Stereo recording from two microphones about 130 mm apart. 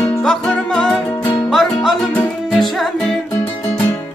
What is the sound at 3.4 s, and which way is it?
Music, 15° left (ahead or behind).